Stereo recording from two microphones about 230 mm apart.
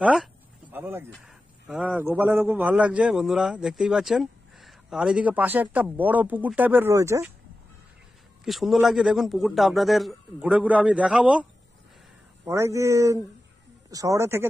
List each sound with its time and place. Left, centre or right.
0.0 s a sound: centre
1.1 s a man's voice: centre
8.5 s a man's voice: centre
12.4 s a man's voice: centre